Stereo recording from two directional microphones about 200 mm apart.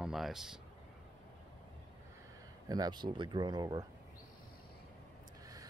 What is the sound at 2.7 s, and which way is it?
Speech, 20° right (ahead or behind).